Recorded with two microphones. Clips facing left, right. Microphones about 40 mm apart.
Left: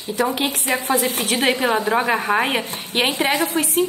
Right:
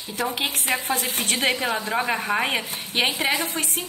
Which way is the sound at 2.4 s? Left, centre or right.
Left.